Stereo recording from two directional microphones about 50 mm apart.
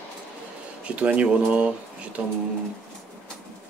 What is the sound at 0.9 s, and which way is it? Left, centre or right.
Speech, right.